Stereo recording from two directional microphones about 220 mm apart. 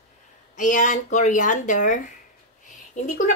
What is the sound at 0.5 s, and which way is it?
Speech, 35° left (ahead or behind).